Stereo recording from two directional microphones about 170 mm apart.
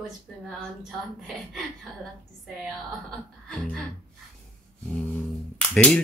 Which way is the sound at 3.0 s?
5° left (ahead or behind).